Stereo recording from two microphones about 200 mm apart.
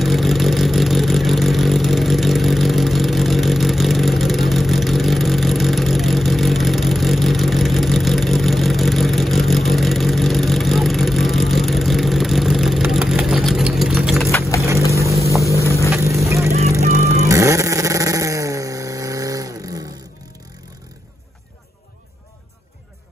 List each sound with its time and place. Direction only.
0.0 s vehicle: centre (ahead or behind)
14.7 s vehicle: 15° right (ahead or behind)
17.2 s vehicle: 15° right (ahead or behind)